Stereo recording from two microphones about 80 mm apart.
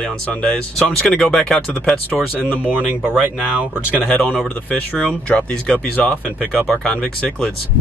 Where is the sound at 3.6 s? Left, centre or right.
Centre.